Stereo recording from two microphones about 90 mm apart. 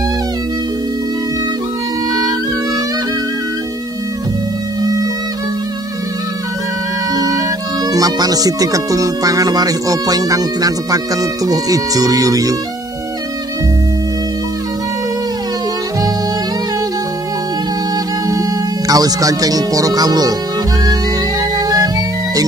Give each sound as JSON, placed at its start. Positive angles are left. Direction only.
{"t": 7.2, "sound": "music", "side_deg": -45}
{"t": 7.9, "sound": "speech", "side_deg": -45}
{"t": 18.3, "sound": "speech", "side_deg": -40}
{"t": 21.4, "sound": "music", "side_deg": -40}